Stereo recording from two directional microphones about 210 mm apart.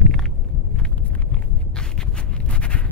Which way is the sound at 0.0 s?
Centre (ahead or behind).